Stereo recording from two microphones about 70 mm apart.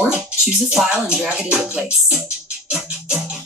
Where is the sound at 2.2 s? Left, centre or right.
Centre.